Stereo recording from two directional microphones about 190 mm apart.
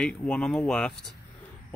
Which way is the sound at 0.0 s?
5° left (ahead or behind).